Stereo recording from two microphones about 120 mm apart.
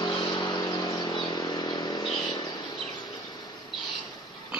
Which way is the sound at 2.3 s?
35° left (ahead or behind).